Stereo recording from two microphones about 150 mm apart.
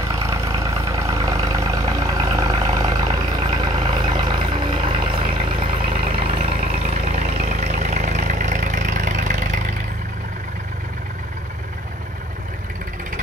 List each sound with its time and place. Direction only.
0.3 s vehicle: 20° right (ahead or behind); by 9.5 s 55° right (ahead or behind)